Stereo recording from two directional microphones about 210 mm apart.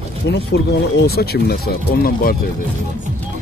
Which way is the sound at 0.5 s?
50° left (ahead or behind).